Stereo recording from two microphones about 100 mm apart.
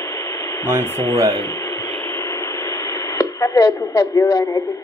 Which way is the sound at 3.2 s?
45° left (ahead or behind).